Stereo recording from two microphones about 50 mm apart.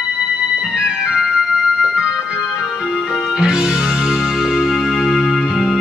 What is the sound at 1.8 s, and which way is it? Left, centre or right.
Keyboard, centre.